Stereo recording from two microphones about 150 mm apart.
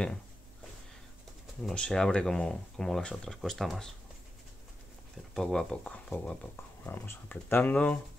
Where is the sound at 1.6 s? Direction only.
5° left (ahead or behind).